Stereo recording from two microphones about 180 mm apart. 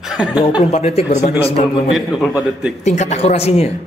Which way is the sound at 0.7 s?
35° left (ahead or behind).